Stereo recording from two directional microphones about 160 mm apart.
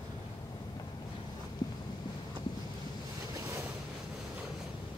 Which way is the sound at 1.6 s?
25° left (ahead or behind).